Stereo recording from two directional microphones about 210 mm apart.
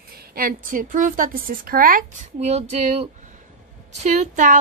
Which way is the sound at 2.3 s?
30° right (ahead or behind).